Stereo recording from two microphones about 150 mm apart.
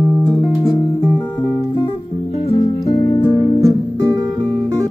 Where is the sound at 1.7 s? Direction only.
35° left (ahead or behind).